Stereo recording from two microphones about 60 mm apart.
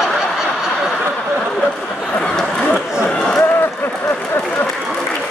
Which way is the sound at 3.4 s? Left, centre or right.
Left.